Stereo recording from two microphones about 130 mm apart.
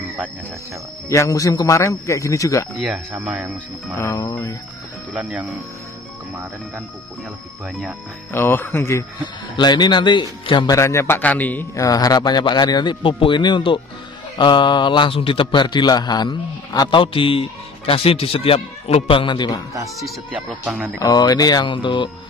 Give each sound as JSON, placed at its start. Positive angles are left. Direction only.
{"t": 1.0, "sound": "a man's voice", "side_deg": 25}
{"t": 2.7, "sound": "speech", "side_deg": 0}
{"t": 3.2, "sound": "speech", "side_deg": -15}
{"t": 3.9, "sound": "a man's voice", "side_deg": 20}
{"t": 5.1, "sound": "speech", "side_deg": -10}
{"t": 8.3, "sound": "a man's voice", "side_deg": 15}
{"t": 9.6, "sound": "a man's voice", "side_deg": 35}
{"t": 10.8, "sound": "a man's voice", "side_deg": 20}
{"t": 11.8, "sound": "a man's voice", "side_deg": 30}
{"t": 20.0, "sound": "speech", "side_deg": 0}
{"t": 20.6, "sound": "speech", "side_deg": -15}
{"t": 21.0, "sound": "a man's voice", "side_deg": 30}